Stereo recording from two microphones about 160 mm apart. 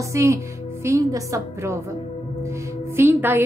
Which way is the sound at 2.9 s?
15° right (ahead or behind).